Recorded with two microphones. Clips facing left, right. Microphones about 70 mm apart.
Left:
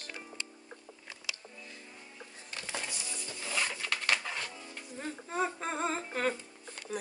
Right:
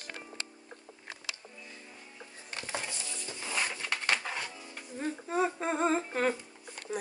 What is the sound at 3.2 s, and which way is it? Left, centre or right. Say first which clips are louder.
Music: right 1 dB; centre.